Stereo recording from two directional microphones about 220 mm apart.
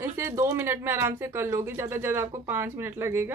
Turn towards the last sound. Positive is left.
turn(degrees=-10)  # may be behind; listen again after turning